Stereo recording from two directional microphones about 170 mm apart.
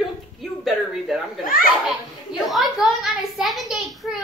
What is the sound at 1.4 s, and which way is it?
Speech, 55° left (ahead or behind).